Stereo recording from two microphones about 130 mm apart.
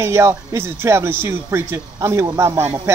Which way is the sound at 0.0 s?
20° right (ahead or behind).